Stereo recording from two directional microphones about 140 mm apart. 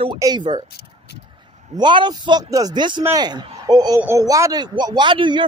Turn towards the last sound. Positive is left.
turn(degrees=-35)  # may be behind; listen again after turning